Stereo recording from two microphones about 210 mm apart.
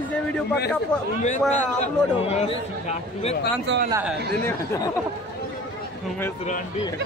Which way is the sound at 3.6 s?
55° right (ahead or behind).